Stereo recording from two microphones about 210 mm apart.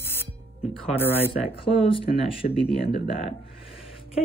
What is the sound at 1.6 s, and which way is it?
Speech, 25° left (ahead or behind).